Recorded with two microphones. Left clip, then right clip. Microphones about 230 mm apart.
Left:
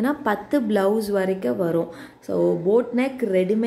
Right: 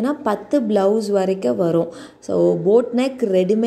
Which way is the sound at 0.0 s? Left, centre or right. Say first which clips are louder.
Right 2 dB; centre.